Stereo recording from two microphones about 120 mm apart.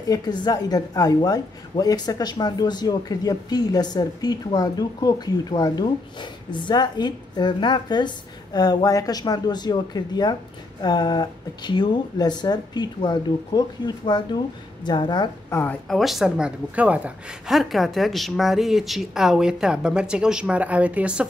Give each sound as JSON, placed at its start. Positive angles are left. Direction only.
{"t": 0.1, "sound": "a woman's voice", "side_deg": 35}
{"t": 15.5, "sound": "a woman's voice", "side_deg": 15}
{"t": 15.9, "sound": "a woman's voice", "side_deg": 0}